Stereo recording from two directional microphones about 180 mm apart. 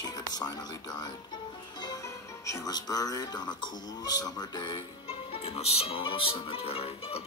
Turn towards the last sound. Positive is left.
turn(degrees=30)  # may be behind; listen again after turning